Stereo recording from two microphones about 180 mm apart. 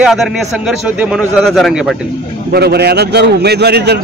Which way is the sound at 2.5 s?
65° right (ahead or behind).